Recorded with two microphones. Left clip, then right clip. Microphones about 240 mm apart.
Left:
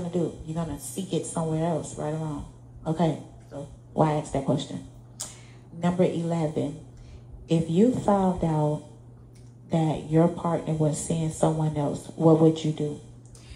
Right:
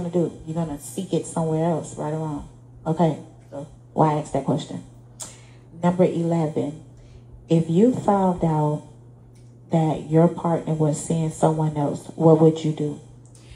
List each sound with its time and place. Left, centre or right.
0.1 s a woman's voice: right
5.8 s a woman's voice: right
7.4 s a woman's voice: right
9.8 s a woman's voice: right